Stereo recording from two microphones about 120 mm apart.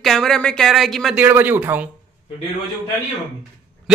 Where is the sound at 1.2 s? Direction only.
15° right (ahead or behind).